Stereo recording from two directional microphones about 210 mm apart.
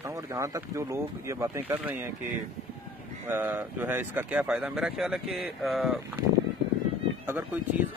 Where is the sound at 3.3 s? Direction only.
10° right (ahead or behind).